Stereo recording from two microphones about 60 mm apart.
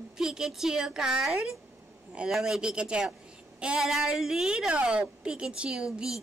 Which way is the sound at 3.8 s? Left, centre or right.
Centre.